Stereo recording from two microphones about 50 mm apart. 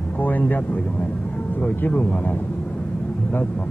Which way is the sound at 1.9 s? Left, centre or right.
Left.